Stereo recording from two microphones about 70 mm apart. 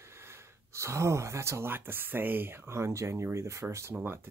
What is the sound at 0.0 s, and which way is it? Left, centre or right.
Speech, right.